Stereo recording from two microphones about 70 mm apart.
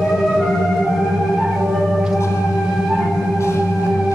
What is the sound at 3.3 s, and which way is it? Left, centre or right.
Organ, left.